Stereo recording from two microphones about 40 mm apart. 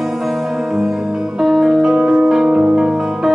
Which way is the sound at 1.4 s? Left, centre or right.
Centre.